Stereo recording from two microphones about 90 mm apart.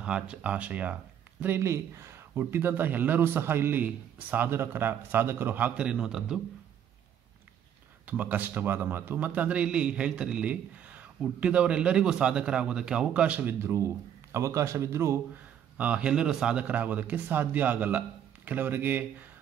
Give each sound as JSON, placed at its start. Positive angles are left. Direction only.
{"t": 0.0, "sound": "a man's voice", "side_deg": -10}
{"t": 1.6, "sound": "speech", "side_deg": -30}
{"t": 8.1, "sound": "a man's voice", "side_deg": -20}
{"t": 13.6, "sound": "a man's voice", "side_deg": -30}
{"t": 15.3, "sound": "a man's voice", "side_deg": -15}